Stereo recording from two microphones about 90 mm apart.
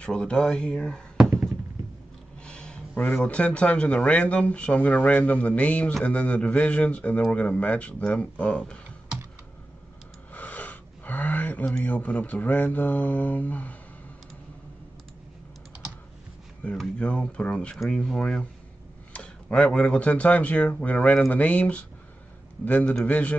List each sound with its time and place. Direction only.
0.0 s speech: 10° left (ahead or behind)
2.4 s a sound: 10° left (ahead or behind)
3.0 s speech: 20° left (ahead or behind)
10.3 s a sound: 15° left (ahead or behind)
11.8 s speech: 15° left (ahead or behind)
16.7 s speech: 10° left (ahead or behind)
23.0 s speech: 15° left (ahead or behind)